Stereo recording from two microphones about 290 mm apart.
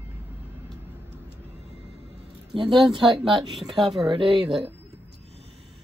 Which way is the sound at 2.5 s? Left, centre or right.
Centre.